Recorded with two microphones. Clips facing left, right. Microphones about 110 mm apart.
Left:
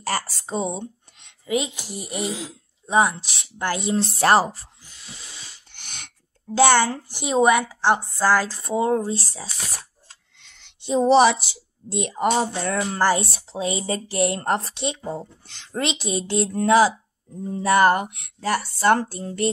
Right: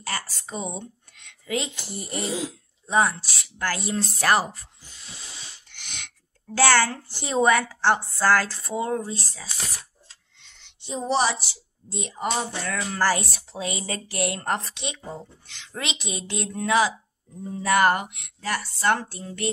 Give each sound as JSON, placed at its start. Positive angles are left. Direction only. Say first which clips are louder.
{"t": 0.0, "sound": "speech", "louder": "left 6 dB", "side_deg": 35}
{"t": 5.7, "sound": "a sound", "louder": "right 1 dB", "side_deg": 45}
{"t": 6.5, "sound": "a woman's voice", "louder": "left 3 dB", "side_deg": 15}
{"t": 10.6, "sound": "a woman's voice", "louder": "left 11 dB", "side_deg": 80}
{"t": 12.4, "sound": "speech", "louder": "left 6 dB", "side_deg": 30}